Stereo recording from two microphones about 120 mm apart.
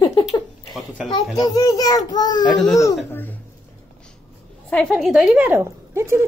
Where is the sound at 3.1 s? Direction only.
15° left (ahead or behind).